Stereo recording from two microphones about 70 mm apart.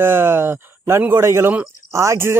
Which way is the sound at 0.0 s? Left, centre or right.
Right.